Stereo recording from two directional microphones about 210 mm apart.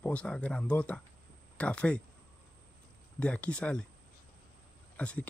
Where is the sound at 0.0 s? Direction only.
5° left (ahead or behind).